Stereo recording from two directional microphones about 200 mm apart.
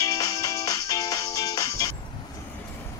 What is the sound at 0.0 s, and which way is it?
Music, 20° left (ahead or behind).